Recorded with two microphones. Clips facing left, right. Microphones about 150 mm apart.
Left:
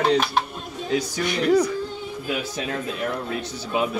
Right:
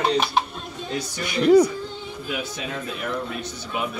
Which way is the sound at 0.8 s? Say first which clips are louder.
Left 6 dB; 90° left.